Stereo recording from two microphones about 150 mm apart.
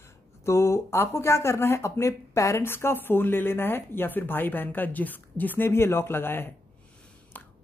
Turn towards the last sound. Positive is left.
turn(degrees=10)  # may be behind; listen again after turning